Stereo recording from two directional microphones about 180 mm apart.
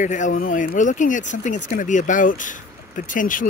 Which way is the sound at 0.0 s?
45° left (ahead or behind).